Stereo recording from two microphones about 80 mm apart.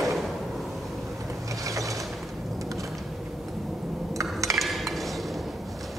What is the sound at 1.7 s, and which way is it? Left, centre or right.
Mechanisms, right.